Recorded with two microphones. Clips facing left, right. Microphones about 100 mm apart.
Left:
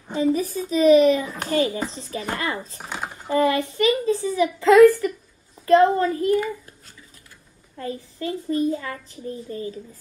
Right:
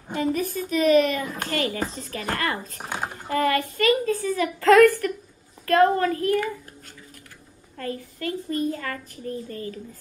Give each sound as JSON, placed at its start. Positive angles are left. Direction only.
{"t": 0.1, "sound": "a sound", "side_deg": -55}
{"t": 0.9, "sound": "a child's voice", "side_deg": -50}
{"t": 1.5, "sound": "a child's voice", "side_deg": 20}
{"t": 2.8, "sound": "speech", "side_deg": -5}
{"t": 3.2, "sound": "a child's voice", "side_deg": 20}
{"t": 7.7, "sound": "a child's voice", "side_deg": 20}